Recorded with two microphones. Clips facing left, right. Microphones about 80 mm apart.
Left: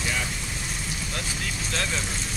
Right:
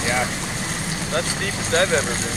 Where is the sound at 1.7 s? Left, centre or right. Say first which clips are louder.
Right 12 dB; right.